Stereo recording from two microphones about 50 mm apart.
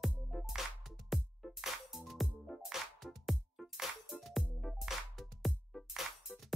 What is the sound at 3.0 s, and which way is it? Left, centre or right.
Music, centre.